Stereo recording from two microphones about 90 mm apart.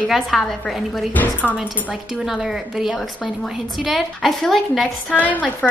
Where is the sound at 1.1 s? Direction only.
20° left (ahead or behind).